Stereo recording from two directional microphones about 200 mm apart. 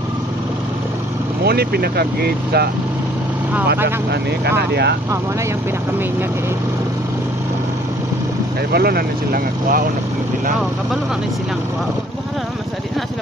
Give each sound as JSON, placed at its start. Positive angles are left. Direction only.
{"t": 1.4, "sound": "speech", "side_deg": -50}
{"t": 3.8, "sound": "speech", "side_deg": -55}
{"t": 8.7, "sound": "speech", "side_deg": -50}